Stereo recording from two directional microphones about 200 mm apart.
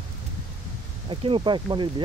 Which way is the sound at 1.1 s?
25° right (ahead or behind).